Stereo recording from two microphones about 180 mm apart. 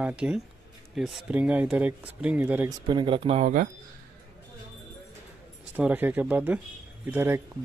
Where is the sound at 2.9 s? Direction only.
25° right (ahead or behind); by 3.7 s 45° right (ahead or behind).